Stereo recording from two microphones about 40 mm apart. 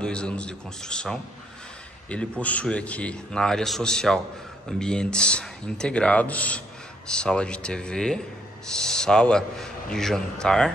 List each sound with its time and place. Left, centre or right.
0.0 s speech: left
2.0 s a man's voice: left
3.3 s speech: centre; by 6.6 s left
7.1 s speech: left